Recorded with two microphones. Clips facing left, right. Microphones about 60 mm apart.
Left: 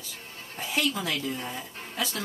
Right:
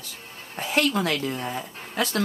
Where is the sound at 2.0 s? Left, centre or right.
Right.